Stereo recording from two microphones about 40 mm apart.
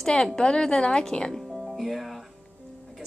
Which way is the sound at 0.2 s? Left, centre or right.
Centre.